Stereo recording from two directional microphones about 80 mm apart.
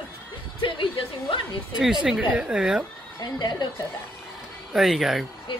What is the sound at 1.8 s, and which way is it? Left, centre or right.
A woman's voice, centre.